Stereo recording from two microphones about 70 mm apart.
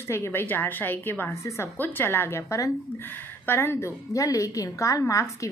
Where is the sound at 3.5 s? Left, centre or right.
Left.